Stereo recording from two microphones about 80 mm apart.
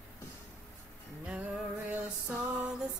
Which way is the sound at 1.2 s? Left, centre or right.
Centre.